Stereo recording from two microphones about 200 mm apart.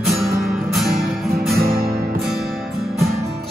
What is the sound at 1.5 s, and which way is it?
Music, 55° right (ahead or behind).